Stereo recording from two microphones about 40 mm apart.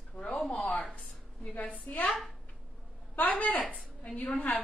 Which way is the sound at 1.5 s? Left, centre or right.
Left.